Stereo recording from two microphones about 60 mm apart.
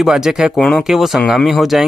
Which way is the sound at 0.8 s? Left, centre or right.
Centre.